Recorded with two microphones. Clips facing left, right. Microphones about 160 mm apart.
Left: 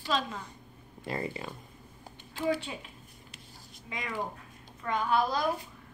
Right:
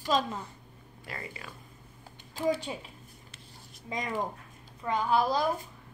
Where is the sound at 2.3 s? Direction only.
40° right (ahead or behind).